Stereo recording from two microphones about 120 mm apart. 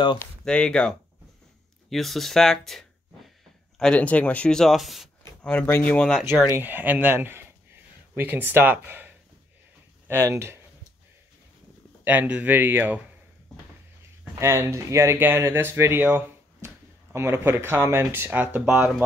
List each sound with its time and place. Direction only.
0.5 s speech: 10° left (ahead or behind)
6.5 s speech: 15° right (ahead or behind)
12.0 s speech: 15° right (ahead or behind)
14.4 s speech: 25° right (ahead or behind)